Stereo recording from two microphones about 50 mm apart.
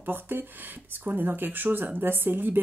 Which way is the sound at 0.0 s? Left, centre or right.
Right.